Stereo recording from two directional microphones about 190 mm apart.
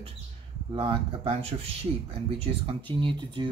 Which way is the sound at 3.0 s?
25° right (ahead or behind).